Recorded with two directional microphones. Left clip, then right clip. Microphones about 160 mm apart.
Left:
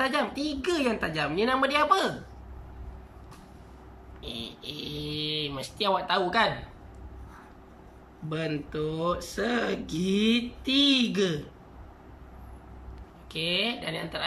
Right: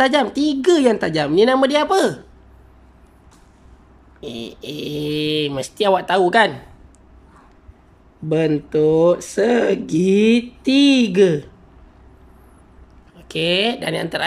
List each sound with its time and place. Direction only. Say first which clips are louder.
0.0 s speech: right 11 dB; 50° right (ahead or behind)
4.2 s speech: right 8 dB; 50° right (ahead or behind)
8.3 s speech: right 14 dB; 45° right (ahead or behind)
13.3 s speech: right 10 dB; 50° right (ahead or behind)